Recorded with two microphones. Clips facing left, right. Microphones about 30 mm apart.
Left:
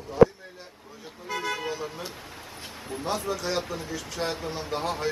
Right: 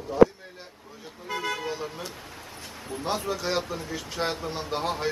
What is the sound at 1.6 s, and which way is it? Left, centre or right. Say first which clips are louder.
Speech: even; centre.